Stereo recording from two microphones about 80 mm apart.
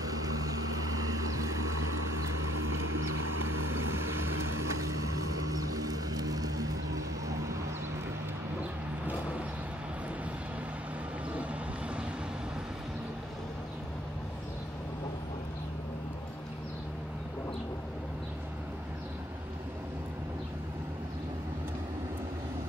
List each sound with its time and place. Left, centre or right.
0.0 s vehicle: right
3.7 s vehicle: right
4.6 s vehicle: right